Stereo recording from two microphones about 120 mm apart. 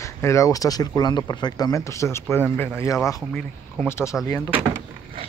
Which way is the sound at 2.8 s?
30° left (ahead or behind).